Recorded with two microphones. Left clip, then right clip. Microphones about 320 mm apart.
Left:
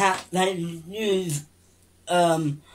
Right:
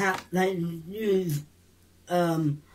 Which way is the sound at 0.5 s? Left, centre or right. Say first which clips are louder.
Left 2 dB; left.